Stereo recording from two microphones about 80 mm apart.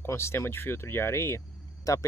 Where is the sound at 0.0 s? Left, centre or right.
Left.